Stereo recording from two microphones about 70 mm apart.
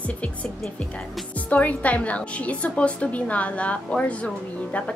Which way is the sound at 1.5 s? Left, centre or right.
Left.